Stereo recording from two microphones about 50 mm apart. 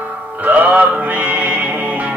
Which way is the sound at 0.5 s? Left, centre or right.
Right.